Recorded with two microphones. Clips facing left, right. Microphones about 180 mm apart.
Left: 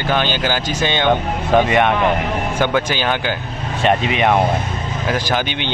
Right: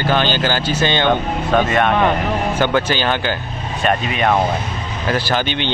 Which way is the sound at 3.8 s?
20° left (ahead or behind).